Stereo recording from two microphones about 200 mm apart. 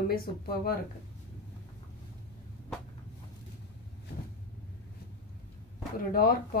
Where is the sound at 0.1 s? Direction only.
50° left (ahead or behind).